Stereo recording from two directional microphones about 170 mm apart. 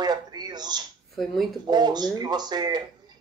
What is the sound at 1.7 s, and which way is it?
Speech, 25° right (ahead or behind).